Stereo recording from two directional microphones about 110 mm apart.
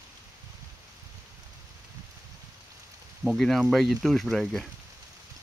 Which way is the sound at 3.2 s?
Centre (ahead or behind).